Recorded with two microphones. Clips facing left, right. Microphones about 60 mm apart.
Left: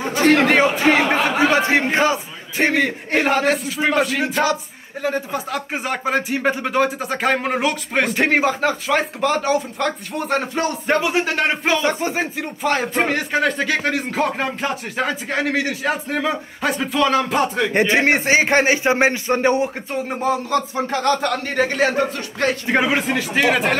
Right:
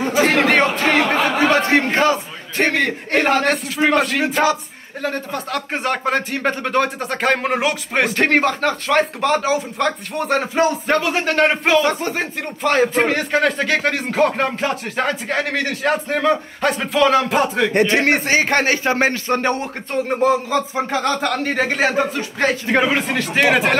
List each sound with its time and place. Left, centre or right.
0.1 s a man's voice: centre
10.9 s a man's voice: centre
11.1 s speech: centre
17.7 s a man's voice: centre
20.1 s speech: centre